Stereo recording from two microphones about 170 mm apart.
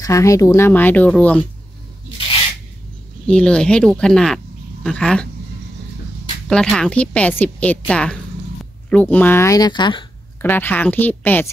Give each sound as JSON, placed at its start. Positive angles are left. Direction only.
{"t": 0.0, "sound": "speech", "side_deg": 20}
{"t": 3.3, "sound": "speech", "side_deg": 5}
{"t": 6.5, "sound": "speech", "side_deg": 5}
{"t": 10.4, "sound": "speech", "side_deg": 10}